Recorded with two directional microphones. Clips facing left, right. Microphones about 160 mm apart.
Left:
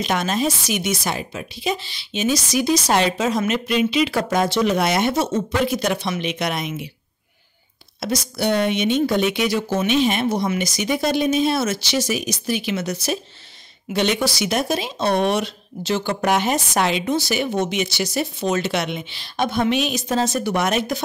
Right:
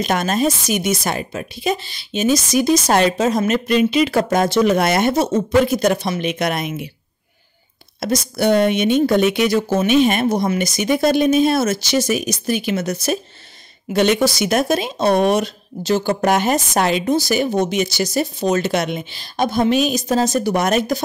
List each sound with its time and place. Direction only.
0.0 s speech: 45° right (ahead or behind)
8.0 s speech: 50° right (ahead or behind)